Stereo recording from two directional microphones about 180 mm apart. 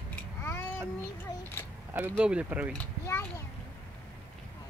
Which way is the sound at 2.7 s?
10° left (ahead or behind).